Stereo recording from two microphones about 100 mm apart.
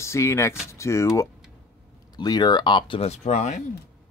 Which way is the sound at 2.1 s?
45° left (ahead or behind).